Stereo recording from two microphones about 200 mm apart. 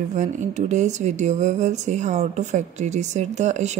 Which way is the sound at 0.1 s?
35° right (ahead or behind).